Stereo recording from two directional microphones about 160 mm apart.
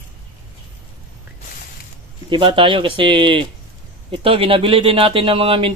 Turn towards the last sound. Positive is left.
turn(degrees=-35)  # may be behind; listen again after turning